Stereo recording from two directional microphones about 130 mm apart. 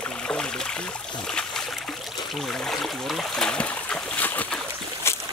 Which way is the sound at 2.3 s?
Centre (ahead or behind).